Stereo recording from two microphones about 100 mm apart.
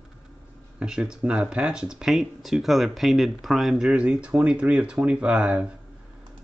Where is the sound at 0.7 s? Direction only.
10° right (ahead or behind).